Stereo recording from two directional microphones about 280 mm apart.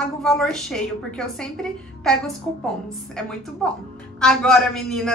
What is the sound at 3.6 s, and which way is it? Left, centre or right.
A woman's voice, centre.